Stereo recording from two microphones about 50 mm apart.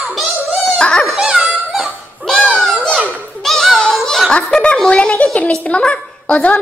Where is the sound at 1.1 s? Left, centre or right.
Centre.